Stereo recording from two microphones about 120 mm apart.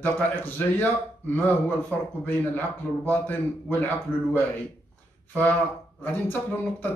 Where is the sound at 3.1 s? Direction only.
15° left (ahead or behind).